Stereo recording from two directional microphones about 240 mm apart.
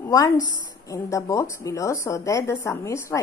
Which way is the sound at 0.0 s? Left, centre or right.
Centre.